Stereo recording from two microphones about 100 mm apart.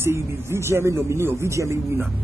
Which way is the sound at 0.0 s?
25° right (ahead or behind).